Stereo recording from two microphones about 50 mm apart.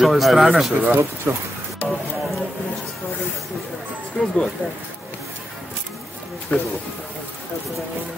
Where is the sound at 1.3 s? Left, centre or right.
Right.